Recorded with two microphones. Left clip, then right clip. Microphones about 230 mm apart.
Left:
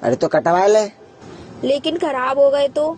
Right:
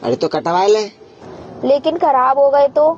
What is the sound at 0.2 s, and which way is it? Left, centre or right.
Speech, left.